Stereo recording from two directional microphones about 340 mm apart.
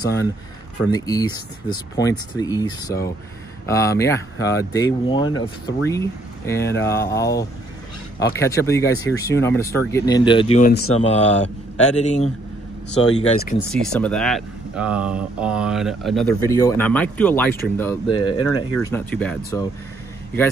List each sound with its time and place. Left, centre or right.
0.0 s speech: centre
13.7 s speech: centre